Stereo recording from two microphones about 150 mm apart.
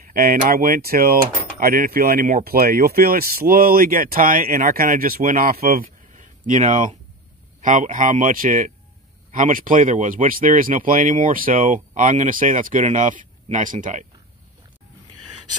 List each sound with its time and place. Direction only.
0.0 s speech: 80° right
5.9 s a sound: 55° right (ahead or behind)
7.6 s speech: 60° right (ahead or behind)